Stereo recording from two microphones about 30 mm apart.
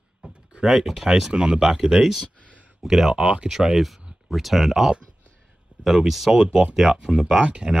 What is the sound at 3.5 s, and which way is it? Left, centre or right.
Speech, centre.